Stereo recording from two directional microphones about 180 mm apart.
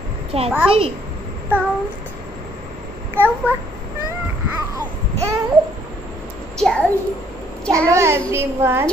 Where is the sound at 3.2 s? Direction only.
10° right (ahead or behind).